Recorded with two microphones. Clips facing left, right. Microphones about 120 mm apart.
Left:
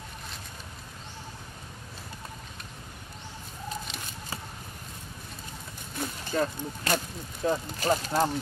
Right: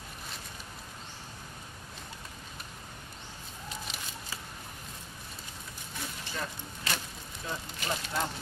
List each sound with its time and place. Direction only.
6.2 s speech: 45° left (ahead or behind)